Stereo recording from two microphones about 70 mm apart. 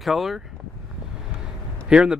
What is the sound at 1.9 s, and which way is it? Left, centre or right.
Speech, centre.